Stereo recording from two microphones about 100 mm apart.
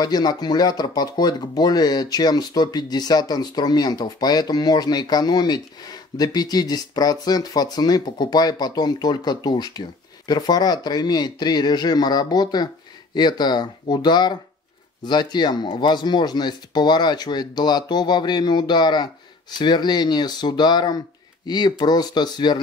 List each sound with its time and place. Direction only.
0.0 s speech: 45° left (ahead or behind)